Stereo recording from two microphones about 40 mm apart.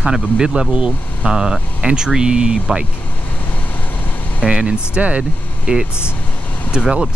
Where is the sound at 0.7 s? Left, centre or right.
Right.